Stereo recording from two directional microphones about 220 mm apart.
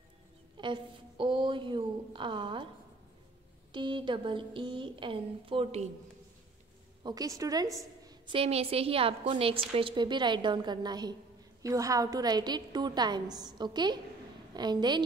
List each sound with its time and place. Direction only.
0.6 s a woman's voice: 20° right (ahead or behind)
3.7 s a woman's voice: 20° right (ahead or behind)
7.0 s a woman's voice: 20° right (ahead or behind)